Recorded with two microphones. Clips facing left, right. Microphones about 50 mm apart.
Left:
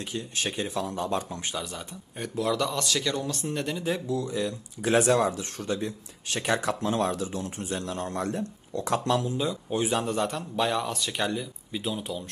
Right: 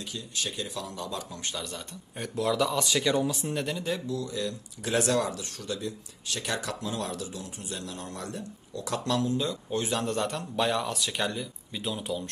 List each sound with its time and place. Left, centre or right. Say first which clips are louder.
0.1 s a man's voice: left 4 dB; left
1.4 s speech: left 2 dB; centre
1.7 s speech: left 1 dB; centre
4.1 s speech: left 3 dB; left
6.8 s a man's voice: left 6 dB; left; by 10.0 s centre
10.0 s speech: left 1 dB; centre